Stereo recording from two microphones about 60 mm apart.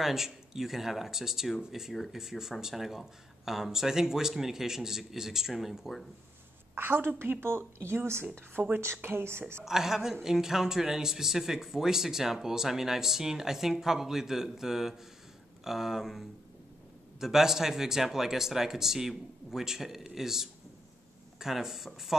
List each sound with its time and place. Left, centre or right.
0.0 s speech: centre
6.7 s a woman's voice: right
9.7 s speech: centre